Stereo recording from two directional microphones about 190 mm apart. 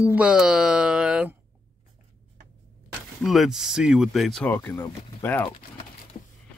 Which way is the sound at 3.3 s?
Centre (ahead or behind).